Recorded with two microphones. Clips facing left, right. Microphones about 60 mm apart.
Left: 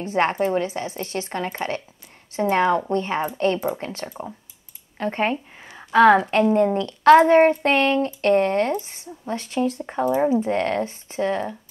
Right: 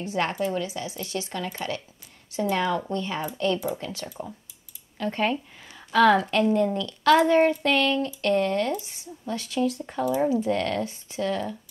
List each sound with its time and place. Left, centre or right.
0.0 s a woman's voice: left